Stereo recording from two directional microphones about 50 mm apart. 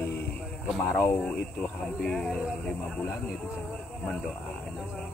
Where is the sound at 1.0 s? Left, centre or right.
Left.